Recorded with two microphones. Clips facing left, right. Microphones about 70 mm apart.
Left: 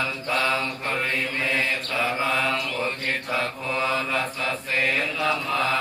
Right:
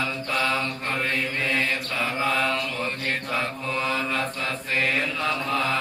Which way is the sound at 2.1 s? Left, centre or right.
Centre.